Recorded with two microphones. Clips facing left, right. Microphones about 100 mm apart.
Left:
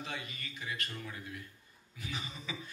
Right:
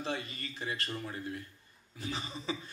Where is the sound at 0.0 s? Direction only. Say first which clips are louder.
Right 5 dB; 35° right (ahead or behind).